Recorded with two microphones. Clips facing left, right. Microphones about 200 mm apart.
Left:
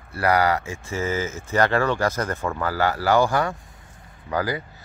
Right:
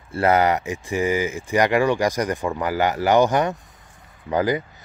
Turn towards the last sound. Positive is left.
turn(degrees=-20)  # may be behind; listen again after turning